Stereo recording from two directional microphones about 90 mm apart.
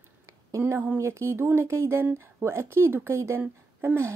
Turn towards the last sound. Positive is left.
turn(degrees=-25)  # may be behind; listen again after turning